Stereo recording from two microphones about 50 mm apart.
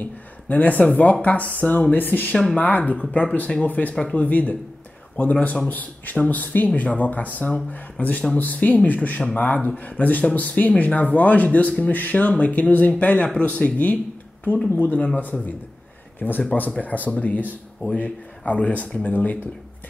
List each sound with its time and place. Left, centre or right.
0.5 s speech: left
3.0 s speech: centre
3.6 s speech: left
3.9 s speech: left